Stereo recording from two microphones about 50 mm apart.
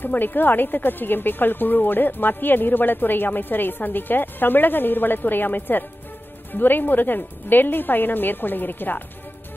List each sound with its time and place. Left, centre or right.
0.0 s speech: left